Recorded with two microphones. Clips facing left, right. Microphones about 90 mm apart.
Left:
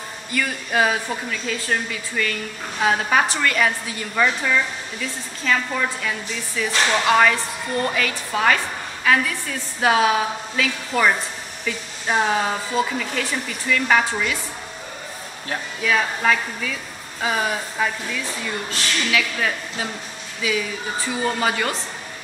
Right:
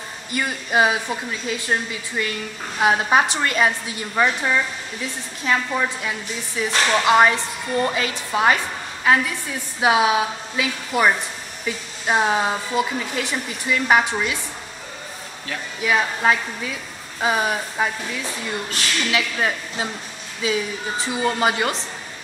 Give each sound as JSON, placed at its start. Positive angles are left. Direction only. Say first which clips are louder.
{"t": 0.3, "sound": "a woman's voice", "louder": "right 1 dB", "side_deg": -20}
{"t": 15.8, "sound": "a woman's voice", "louder": "right 1 dB", "side_deg": -20}